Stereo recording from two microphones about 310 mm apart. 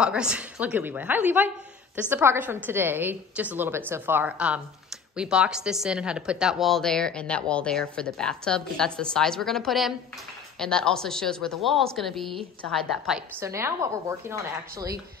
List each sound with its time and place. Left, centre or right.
0.0 s a woman's voice: centre